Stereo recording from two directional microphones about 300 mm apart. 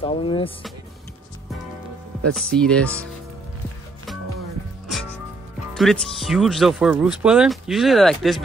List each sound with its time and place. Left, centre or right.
0.0 s speech: centre
2.3 s speech: centre
5.8 s speech: centre